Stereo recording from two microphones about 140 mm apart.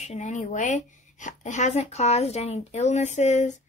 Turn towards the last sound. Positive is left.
turn(degrees=60)  # may be behind; listen again after turning